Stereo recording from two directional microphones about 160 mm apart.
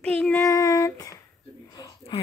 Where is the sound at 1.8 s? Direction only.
35° left (ahead or behind).